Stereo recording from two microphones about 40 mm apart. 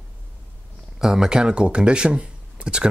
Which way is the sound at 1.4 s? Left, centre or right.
Right.